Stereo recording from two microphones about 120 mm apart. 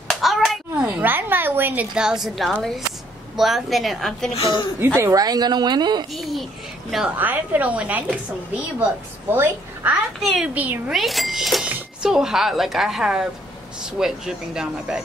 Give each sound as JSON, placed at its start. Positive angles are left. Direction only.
{"t": 0.1, "sound": "clapping", "side_deg": 0}
{"t": 0.8, "sound": "a sound", "side_deg": -15}
{"t": 3.3, "sound": "speech", "side_deg": 0}
{"t": 4.3, "sound": "speech", "side_deg": 45}
{"t": 4.7, "sound": "a woman's voice", "side_deg": -15}
{"t": 5.1, "sound": "speech", "side_deg": -35}
{"t": 6.1, "sound": "a sound", "side_deg": 0}
{"t": 7.1, "sound": "a woman's voice", "side_deg": -15}
{"t": 9.3, "sound": "a woman's voice", "side_deg": -20}
{"t": 10.2, "sound": "speech", "side_deg": 0}
{"t": 10.5, "sound": "a woman's voice", "side_deg": -15}
{"t": 10.9, "sound": "speech", "side_deg": 0}